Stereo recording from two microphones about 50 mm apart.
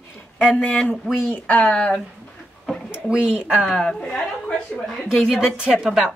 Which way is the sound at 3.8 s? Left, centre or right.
Centre.